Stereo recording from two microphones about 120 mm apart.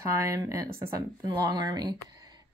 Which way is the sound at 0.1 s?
30° right (ahead or behind).